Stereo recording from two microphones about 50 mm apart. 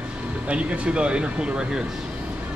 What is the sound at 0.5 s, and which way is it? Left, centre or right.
Speech, right.